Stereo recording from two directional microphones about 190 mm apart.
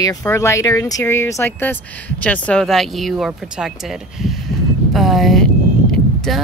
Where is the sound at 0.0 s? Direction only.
15° left (ahead or behind).